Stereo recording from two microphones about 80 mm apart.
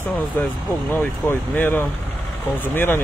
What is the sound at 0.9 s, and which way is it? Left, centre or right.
Speech, left.